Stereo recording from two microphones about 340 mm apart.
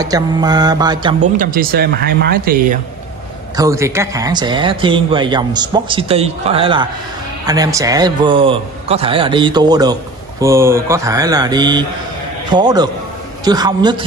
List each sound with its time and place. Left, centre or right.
0.0 s speech: centre
1.3 s speech: right
3.5 s speech: centre